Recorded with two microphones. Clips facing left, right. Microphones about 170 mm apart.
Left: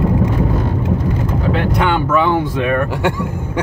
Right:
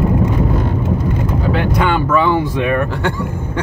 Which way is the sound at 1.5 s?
Centre (ahead or behind).